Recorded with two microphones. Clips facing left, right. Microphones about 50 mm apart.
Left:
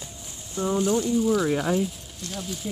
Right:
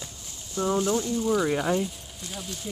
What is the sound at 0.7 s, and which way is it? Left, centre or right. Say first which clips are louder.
Speech: left 3 dB; centre.